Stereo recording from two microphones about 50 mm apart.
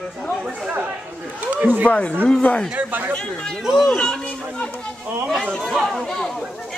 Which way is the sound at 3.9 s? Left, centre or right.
Centre.